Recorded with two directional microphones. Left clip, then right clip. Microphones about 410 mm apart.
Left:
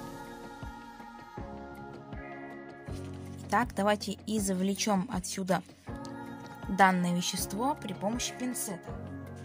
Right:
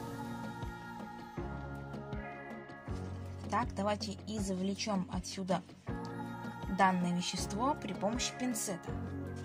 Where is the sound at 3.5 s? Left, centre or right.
Right.